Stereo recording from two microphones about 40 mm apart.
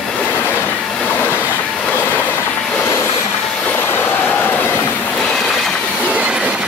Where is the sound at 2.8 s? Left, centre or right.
Left.